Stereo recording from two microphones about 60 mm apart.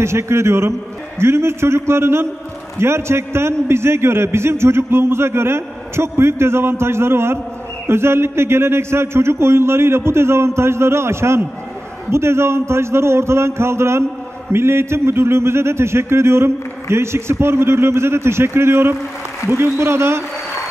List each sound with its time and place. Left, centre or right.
0.0 s a man's voice: right